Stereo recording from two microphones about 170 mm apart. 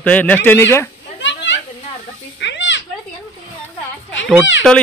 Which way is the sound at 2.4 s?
90° left.